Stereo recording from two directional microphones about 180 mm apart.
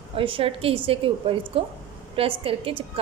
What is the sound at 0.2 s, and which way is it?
A woman's voice, 30° right (ahead or behind).